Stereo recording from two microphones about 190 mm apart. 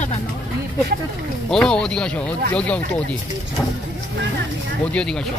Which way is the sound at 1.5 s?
5° left (ahead or behind).